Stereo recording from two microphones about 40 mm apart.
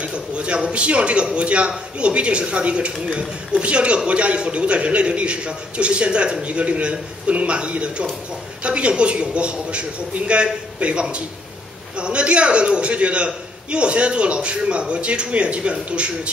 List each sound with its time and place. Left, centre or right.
0.0 s a woman's voice: right